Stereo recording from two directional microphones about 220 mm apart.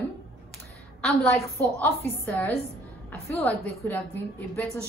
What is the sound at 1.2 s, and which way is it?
Speech, 15° left (ahead or behind).